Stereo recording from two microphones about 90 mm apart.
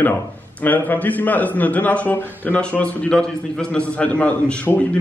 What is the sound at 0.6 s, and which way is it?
A man's voice, 20° left (ahead or behind).